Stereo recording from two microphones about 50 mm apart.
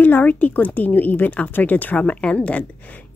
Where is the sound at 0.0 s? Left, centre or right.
Left.